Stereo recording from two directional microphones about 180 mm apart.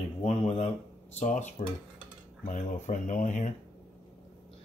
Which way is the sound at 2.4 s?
45° left (ahead or behind).